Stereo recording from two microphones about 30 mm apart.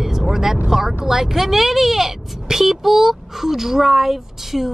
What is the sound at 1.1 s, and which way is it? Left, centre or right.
Speech, centre.